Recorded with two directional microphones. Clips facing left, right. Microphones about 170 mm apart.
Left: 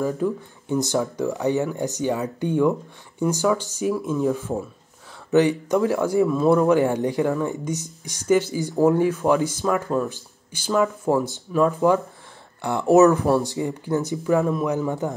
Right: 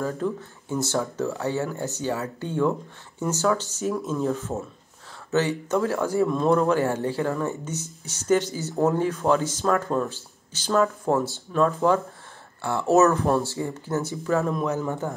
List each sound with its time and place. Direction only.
0.0 s speech: 15° left (ahead or behind)